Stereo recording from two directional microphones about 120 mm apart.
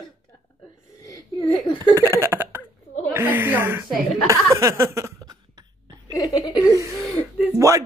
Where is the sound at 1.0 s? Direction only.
30° left (ahead or behind).